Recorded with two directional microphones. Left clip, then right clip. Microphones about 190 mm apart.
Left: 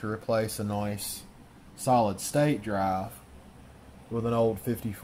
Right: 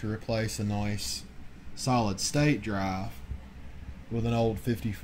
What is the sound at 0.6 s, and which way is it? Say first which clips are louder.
Speech: left 3 dB; 35° left (ahead or behind).